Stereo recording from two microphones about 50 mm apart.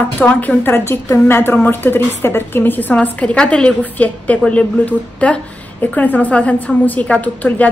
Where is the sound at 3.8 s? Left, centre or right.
Left.